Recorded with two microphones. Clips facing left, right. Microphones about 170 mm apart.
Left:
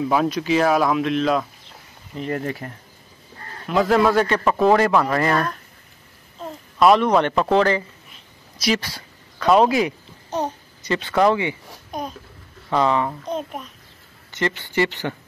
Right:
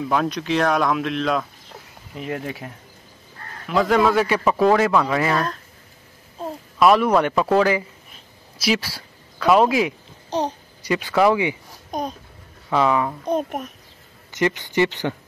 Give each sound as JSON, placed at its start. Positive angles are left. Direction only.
{"t": 0.1, "sound": "speech", "side_deg": 5}
{"t": 6.8, "sound": "speech", "side_deg": -5}
{"t": 11.9, "sound": "babbling", "side_deg": -45}
{"t": 12.7, "sound": "speech", "side_deg": -5}
{"t": 13.3, "sound": "a child's voice", "side_deg": -55}
{"t": 14.3, "sound": "speech", "side_deg": -15}